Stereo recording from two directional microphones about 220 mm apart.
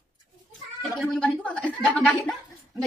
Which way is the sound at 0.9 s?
5° left (ahead or behind).